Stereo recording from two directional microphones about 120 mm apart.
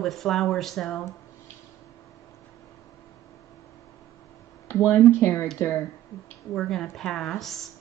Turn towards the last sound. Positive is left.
turn(degrees=0)  # may be behind; listen again after turning